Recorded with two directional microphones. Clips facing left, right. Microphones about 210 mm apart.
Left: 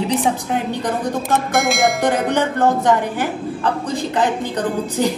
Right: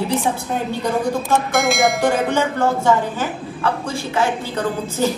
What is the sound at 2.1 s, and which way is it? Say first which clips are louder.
A woman's voice: left 1 dB; 15° left (ahead or behind).